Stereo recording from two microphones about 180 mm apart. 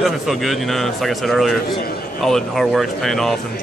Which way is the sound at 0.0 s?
Centre (ahead or behind).